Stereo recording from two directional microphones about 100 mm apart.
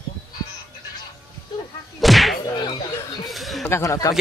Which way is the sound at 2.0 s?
Centre (ahead or behind).